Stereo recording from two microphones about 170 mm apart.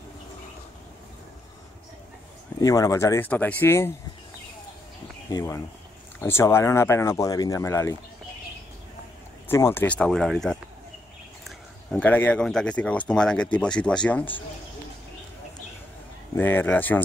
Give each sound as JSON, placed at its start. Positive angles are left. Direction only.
{"t": 2.6, "sound": "speech", "side_deg": 20}
{"t": 5.3, "sound": "speech", "side_deg": 20}
{"t": 9.5, "sound": "speech", "side_deg": 15}
{"t": 16.3, "sound": "speech", "side_deg": 10}